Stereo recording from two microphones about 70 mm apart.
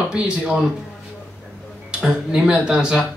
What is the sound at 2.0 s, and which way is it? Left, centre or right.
Speech, centre.